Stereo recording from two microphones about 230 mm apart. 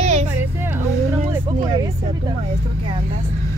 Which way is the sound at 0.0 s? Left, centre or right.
Right.